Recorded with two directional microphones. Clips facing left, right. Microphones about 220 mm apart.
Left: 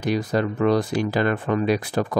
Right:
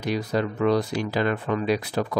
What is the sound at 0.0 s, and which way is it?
Speech, 45° left (ahead or behind).